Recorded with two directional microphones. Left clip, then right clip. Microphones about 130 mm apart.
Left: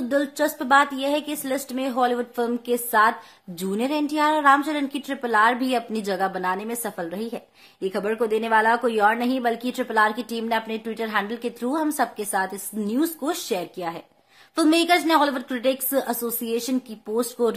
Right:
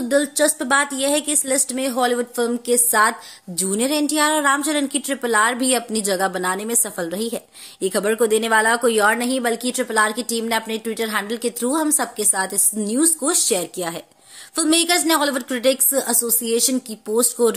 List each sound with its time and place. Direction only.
0.1 s a woman's voice: 15° right (ahead or behind)